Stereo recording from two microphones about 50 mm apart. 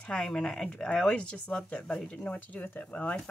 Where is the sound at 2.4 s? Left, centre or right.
Left.